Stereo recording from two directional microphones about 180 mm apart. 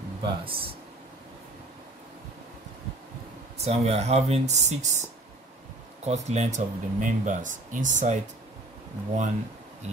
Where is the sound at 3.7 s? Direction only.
35° right (ahead or behind).